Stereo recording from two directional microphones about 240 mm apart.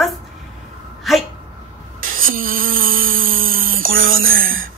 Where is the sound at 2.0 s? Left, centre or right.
Right.